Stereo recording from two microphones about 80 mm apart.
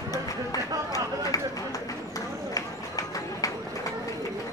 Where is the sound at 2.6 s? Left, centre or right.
Left.